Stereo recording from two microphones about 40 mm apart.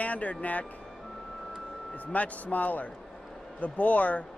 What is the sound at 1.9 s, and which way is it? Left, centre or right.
Speech, left.